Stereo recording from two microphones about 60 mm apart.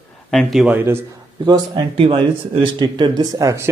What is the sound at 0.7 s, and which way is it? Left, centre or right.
Speech, right.